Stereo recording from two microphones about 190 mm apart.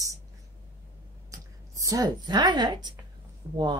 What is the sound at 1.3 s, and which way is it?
Speech, 15° right (ahead or behind).